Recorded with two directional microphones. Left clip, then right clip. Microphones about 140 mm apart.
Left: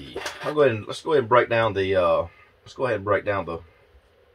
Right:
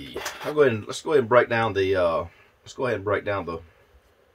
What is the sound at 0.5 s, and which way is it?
Speech, 30° right (ahead or behind).